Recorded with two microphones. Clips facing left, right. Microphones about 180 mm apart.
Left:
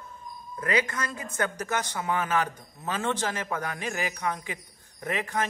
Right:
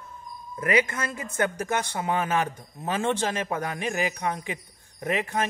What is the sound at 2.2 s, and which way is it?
A man's voice, 15° right (ahead or behind).